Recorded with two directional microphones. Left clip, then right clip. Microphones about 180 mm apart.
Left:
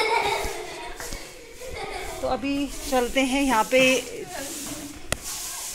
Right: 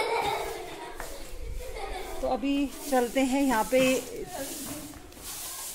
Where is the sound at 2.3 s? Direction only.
20° right (ahead or behind).